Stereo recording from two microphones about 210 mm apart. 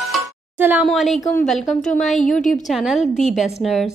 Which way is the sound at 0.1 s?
10° right (ahead or behind).